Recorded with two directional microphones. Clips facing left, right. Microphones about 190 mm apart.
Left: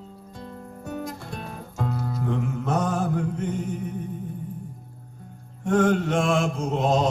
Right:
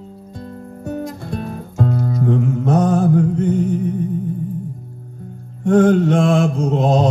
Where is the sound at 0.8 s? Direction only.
35° right (ahead or behind).